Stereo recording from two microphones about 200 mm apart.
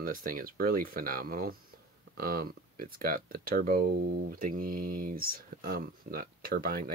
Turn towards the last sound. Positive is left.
turn(degrees=-45)  # may be behind; listen again after turning